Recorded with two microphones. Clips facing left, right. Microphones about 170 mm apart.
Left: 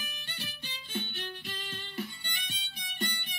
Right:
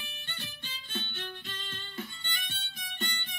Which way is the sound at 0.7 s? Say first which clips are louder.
Left 3 dB; 15° left (ahead or behind).